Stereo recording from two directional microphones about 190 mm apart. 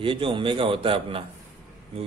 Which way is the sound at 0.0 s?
25° right (ahead or behind).